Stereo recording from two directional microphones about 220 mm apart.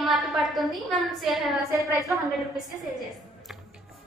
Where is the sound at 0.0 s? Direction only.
Centre (ahead or behind).